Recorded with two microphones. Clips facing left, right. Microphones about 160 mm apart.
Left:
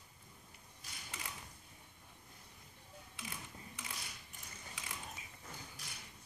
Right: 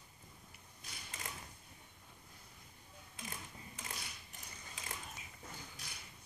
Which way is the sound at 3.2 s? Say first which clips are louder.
Right 1 dB; 40° right (ahead or behind).